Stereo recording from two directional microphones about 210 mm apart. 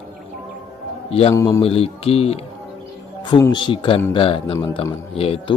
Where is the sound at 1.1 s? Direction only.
30° left (ahead or behind).